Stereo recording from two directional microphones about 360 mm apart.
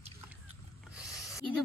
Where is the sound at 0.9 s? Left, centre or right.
Centre.